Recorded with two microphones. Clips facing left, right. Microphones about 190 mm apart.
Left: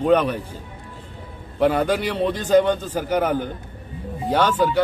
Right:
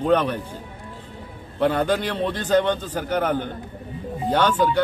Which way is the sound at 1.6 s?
10° left (ahead or behind).